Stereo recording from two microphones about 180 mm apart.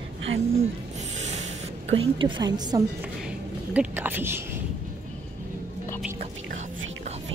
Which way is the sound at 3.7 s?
10° right (ahead or behind).